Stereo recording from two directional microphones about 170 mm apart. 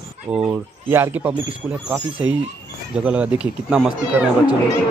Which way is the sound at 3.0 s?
5° right (ahead or behind).